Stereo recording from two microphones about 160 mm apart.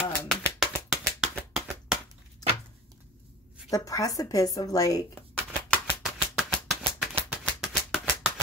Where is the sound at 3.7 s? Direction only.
20° left (ahead or behind).